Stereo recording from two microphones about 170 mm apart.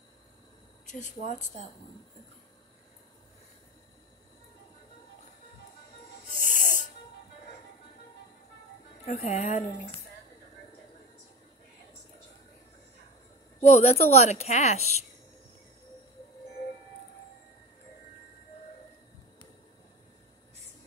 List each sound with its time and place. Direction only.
0.9 s a woman's voice: 50° left (ahead or behind)
6.3 s music: 55° right (ahead or behind)
6.6 s music: 50° left (ahead or behind)
9.0 s a woman's voice: 40° left (ahead or behind)
13.6 s a woman's voice: 40° left (ahead or behind)